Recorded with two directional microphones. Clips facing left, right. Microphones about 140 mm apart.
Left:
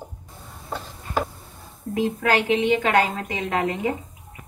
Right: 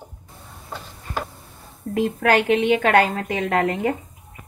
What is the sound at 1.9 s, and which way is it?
A woman's voice, 55° right (ahead or behind).